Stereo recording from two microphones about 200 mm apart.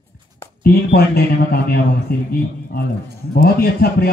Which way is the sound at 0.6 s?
50° left (ahead or behind).